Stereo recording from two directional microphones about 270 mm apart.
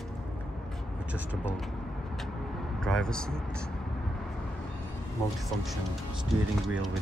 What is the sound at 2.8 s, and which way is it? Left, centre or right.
Speech, centre.